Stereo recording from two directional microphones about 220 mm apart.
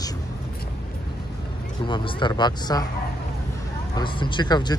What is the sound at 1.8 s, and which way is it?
Speech, 20° left (ahead or behind).